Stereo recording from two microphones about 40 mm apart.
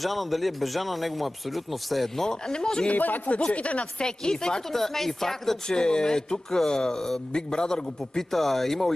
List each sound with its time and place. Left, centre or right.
0.0 s speech: centre
2.2 s speech: centre
2.9 s speech: left
3.3 s speech: left
4.0 s speech: left
4.7 s speech: centre
8.3 s speech: centre